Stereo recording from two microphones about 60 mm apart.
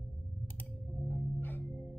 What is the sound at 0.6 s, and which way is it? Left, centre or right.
Music, left.